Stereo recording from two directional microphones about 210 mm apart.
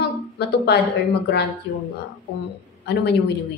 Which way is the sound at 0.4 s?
50° left (ahead or behind).